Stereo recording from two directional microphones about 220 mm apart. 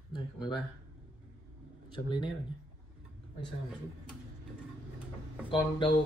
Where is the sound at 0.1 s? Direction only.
20° left (ahead or behind).